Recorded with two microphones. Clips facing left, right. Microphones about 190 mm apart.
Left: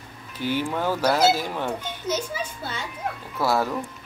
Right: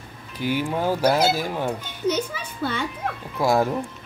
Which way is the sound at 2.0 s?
60° right (ahead or behind).